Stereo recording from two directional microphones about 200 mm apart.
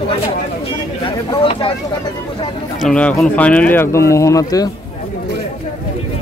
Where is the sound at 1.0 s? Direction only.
25° left (ahead or behind).